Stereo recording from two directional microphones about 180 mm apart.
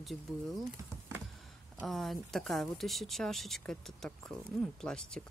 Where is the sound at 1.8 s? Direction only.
Centre (ahead or behind).